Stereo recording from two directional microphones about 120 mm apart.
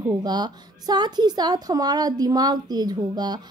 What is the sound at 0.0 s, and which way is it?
A woman's voice, 35° right (ahead or behind).